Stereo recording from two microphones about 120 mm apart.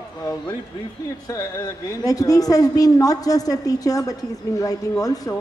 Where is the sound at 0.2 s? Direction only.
30° left (ahead or behind).